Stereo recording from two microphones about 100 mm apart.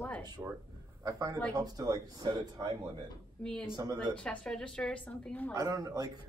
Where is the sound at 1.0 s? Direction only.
35° right (ahead or behind).